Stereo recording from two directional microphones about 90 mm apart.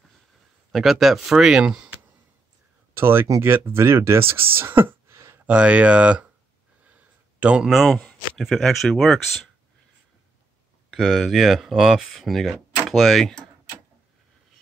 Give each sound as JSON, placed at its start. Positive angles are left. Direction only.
{"t": 0.7, "sound": "speech", "side_deg": 0}
{"t": 3.0, "sound": "speech", "side_deg": -25}
{"t": 4.6, "sound": "a sound", "side_deg": -25}
{"t": 5.5, "sound": "speech", "side_deg": -15}
{"t": 7.3, "sound": "speech", "side_deg": -15}
{"t": 7.6, "sound": "speech", "side_deg": -5}
{"t": 10.9, "sound": "speech", "side_deg": -5}